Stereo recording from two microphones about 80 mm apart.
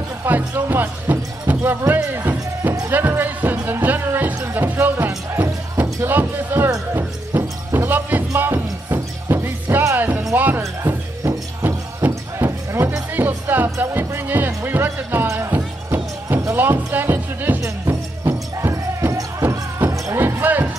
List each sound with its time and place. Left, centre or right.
0.2 s speech: right
2.1 s music: right
15.2 s music: right
17.6 s music: right
19.8 s music: right